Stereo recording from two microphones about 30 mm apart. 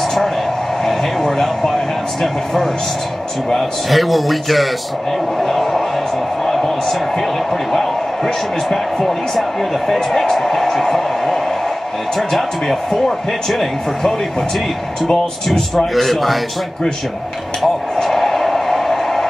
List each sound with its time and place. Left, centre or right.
0.8 s a sound: centre
3.5 s a man's voice: centre
8.6 s a man's voice: centre
9.9 s speech: centre
10.3 s a man's voice: centre
15.0 s speech: centre
15.9 s a man's voice: centre
18.0 s a sound: centre